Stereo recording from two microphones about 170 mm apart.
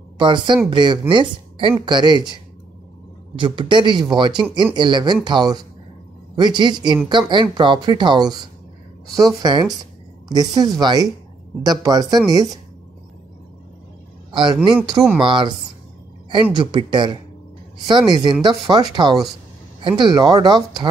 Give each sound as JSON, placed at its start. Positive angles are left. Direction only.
{"t": 0.2, "sound": "speech", "side_deg": -25}
{"t": 3.3, "sound": "speech", "side_deg": -30}
{"t": 14.3, "sound": "speech", "side_deg": -30}
{"t": 16.7, "sound": "speech", "side_deg": -25}